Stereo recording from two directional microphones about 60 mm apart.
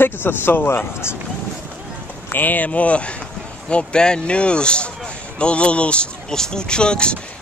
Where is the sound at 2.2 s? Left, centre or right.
Left.